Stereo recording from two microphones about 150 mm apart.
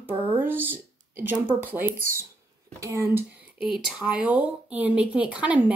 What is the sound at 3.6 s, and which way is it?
A woman's voice, 5° right (ahead or behind).